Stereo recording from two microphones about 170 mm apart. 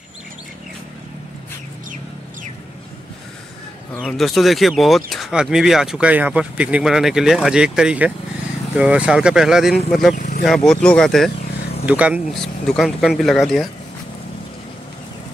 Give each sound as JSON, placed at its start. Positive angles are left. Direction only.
{"t": 4.1, "sound": "speech", "side_deg": 0}
{"t": 10.1, "sound": "vehicle", "side_deg": 45}
{"t": 10.4, "sound": "speech", "side_deg": 0}